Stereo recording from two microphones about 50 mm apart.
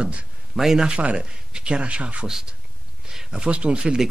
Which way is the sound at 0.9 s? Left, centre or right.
Right.